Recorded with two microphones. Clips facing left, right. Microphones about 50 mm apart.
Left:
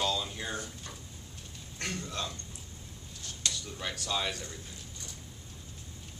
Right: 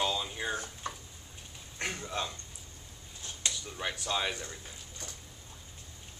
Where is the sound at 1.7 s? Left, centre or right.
Centre.